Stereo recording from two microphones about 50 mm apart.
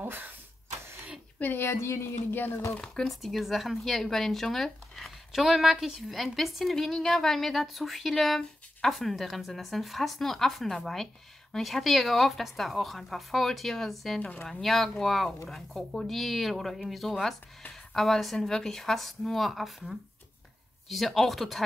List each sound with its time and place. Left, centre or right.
0.0 s speech: right
1.4 s speech: left
1.7 s speech: left
2.3 s speech: left
2.8 s speech: centre
3.1 s speech: centre
14.2 s a woman's voice: left
14.5 s speech: centre